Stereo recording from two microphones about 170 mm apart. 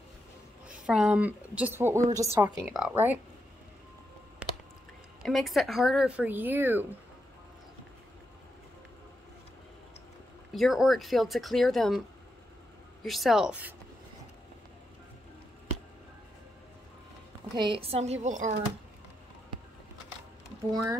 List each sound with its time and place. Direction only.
0.8 s speech: 5° right (ahead or behind)
4.4 s a sound: 5° right (ahead or behind)
5.2 s speech: centre (ahead or behind)
10.5 s speech: centre (ahead or behind)
13.0 s speech: centre (ahead or behind)
17.6 s a woman's voice: 30° right (ahead or behind)